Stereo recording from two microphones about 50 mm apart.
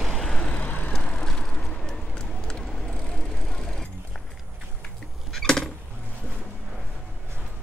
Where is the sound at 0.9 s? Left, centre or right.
Centre.